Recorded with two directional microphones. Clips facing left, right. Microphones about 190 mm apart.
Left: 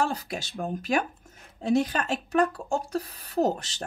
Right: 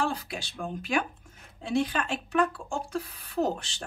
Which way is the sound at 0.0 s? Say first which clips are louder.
Left 2 dB; 40° left (ahead or behind).